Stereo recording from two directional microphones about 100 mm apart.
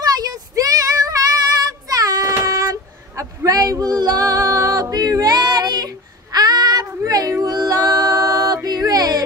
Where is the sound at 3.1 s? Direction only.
35° right (ahead or behind).